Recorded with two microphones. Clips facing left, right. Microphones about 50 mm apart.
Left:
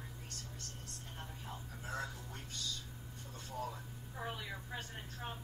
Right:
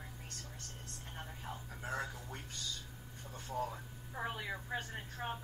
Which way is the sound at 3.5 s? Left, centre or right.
Right.